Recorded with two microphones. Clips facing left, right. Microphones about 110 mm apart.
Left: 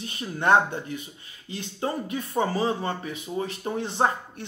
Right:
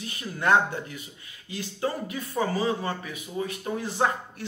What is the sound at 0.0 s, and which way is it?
Speech, 25° left (ahead or behind).